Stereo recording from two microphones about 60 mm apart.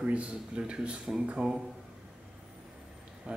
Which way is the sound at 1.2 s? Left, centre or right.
Centre.